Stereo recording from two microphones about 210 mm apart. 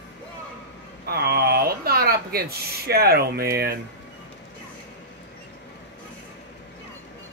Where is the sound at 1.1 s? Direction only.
50° right (ahead or behind).